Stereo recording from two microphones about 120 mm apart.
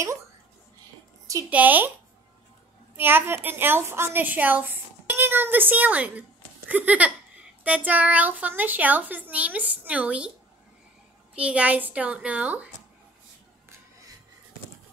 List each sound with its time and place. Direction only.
1.5 s a woman's voice: 15° right (ahead or behind)
3.0 s a woman's voice: 20° right (ahead or behind)
11.3 s a woman's voice: 10° right (ahead or behind)